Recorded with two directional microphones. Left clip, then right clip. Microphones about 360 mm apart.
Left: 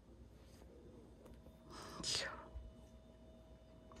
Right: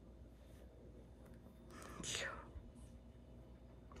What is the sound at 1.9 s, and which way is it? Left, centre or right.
Whispering, centre.